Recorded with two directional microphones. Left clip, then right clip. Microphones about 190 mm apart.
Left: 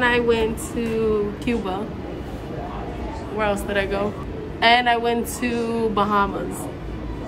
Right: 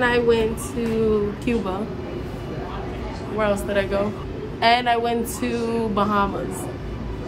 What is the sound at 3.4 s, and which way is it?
Speech, 5° right (ahead or behind).